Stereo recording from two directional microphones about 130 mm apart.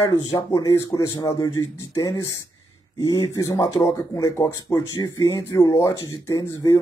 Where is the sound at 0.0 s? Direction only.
25° left (ahead or behind).